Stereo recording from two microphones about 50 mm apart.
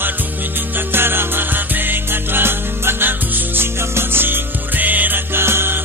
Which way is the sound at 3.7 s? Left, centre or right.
Right.